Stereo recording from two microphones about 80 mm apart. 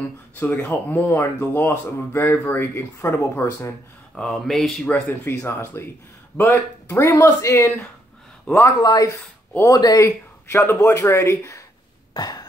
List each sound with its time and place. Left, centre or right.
0.4 s speech: left
3.0 s speech: left
4.2 s a sound: centre
5.2 s speech: left
8.5 s speech: centre
8.8 s speech: left
10.0 s speech: left
12.1 s a sound: left